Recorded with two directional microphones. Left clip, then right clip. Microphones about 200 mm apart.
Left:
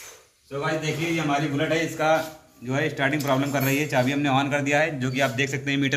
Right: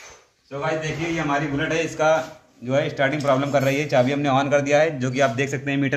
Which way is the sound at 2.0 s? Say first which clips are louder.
Right 5 dB; 45° right (ahead or behind).